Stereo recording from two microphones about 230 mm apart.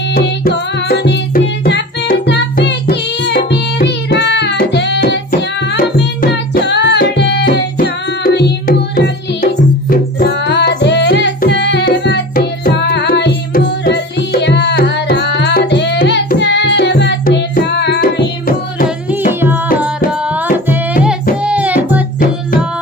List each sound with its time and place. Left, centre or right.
0.1 s music: left
5.7 s tabla: left
6.5 s music: left
19.0 s music: centre